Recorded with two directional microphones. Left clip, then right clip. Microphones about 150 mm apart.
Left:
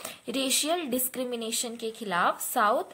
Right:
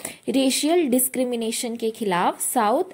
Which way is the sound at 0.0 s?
30° right (ahead or behind).